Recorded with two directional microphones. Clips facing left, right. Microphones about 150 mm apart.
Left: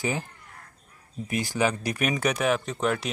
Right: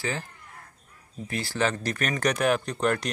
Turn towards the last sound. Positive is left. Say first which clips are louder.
# right 1 dB
turn(degrees=0)  # may be behind; listen again after turning